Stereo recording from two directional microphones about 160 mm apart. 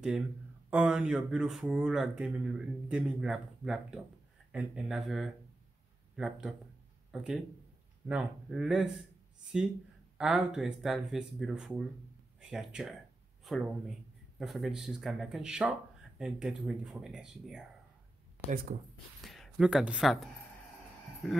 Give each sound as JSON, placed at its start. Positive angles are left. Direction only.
{"t": 0.7, "sound": "speech", "side_deg": -5}
{"t": 10.1, "sound": "speech", "side_deg": -5}
{"t": 18.7, "sound": "speech", "side_deg": -40}
{"t": 19.2, "sound": "speech", "side_deg": 0}